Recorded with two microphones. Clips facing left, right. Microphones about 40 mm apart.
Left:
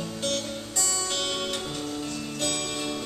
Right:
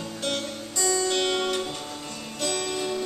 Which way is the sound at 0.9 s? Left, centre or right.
Centre.